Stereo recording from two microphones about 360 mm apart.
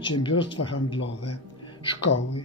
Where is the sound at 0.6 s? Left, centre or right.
Left.